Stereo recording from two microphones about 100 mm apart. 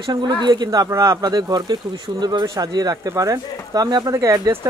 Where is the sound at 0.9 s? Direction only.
30° right (ahead or behind).